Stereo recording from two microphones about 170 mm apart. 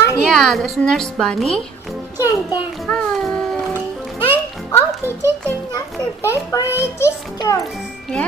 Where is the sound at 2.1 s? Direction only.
20° left (ahead or behind).